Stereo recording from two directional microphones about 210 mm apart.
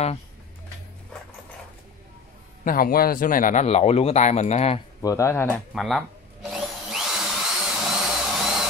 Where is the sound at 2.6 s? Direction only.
40° left (ahead or behind).